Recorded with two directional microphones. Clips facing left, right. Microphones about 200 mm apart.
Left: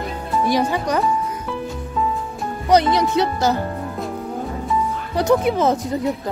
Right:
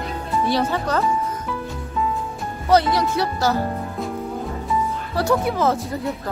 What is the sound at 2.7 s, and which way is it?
Speech, 20° left (ahead or behind).